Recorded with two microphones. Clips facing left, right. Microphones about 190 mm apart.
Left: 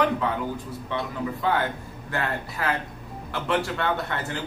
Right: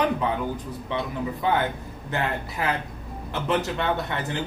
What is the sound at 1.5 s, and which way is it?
Speech, 20° right (ahead or behind).